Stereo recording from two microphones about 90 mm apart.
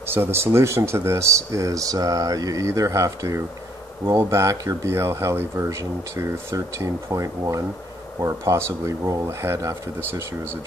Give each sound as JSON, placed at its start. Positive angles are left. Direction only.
{"t": 0.0, "sound": "speech", "side_deg": -25}